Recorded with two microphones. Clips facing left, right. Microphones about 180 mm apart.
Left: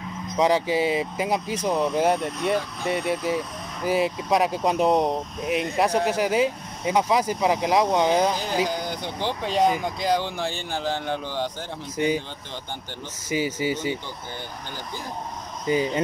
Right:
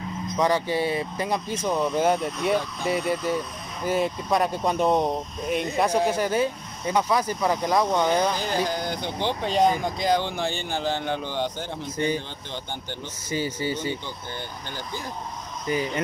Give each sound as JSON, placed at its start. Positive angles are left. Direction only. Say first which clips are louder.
{"t": 0.4, "sound": "speech", "louder": "left 2 dB", "side_deg": 10}
{"t": 13.3, "sound": "speech", "louder": "left 2 dB", "side_deg": 10}
{"t": 15.6, "sound": "speech", "louder": "left 3 dB", "side_deg": 20}